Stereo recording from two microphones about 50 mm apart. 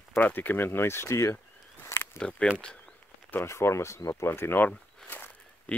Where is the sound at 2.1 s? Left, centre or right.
Centre.